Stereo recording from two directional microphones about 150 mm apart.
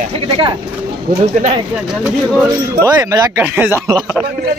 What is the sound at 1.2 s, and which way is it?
Speech, 50° right (ahead or behind).